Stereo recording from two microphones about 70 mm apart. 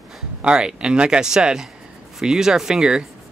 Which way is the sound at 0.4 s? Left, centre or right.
Centre.